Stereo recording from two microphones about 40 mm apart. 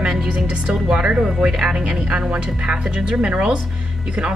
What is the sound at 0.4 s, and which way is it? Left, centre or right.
Speech, centre.